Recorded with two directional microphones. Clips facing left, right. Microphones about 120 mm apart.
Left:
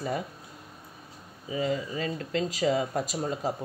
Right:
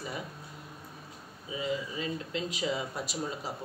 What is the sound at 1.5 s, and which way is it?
Speech, 50° left (ahead or behind).